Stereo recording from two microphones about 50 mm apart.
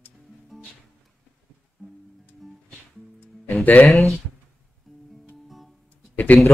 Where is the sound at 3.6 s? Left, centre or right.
Left.